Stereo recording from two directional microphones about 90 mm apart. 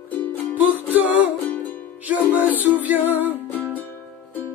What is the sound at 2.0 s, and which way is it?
Music, 15° right (ahead or behind).